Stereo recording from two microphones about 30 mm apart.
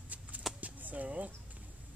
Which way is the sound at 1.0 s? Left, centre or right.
Right.